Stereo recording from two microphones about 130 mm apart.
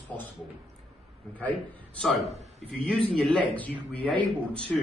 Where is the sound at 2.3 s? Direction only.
60° right (ahead or behind).